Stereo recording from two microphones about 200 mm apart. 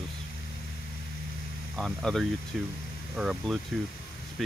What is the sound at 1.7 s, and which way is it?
Speech, centre (ahead or behind).